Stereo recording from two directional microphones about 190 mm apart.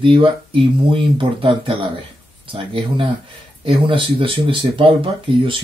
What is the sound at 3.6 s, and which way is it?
Speech, 30° right (ahead or behind).